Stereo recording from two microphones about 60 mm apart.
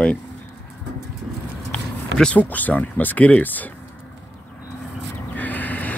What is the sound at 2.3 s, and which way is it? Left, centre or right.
Speech, left.